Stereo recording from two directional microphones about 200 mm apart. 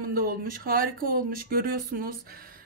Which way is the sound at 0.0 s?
45° right (ahead or behind).